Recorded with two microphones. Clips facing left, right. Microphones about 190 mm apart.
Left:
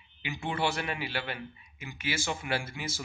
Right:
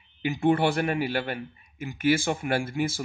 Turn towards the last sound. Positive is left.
turn(degrees=-50)  # may be behind; listen again after turning